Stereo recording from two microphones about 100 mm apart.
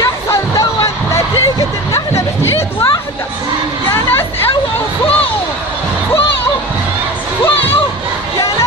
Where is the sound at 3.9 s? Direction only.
25° left (ahead or behind).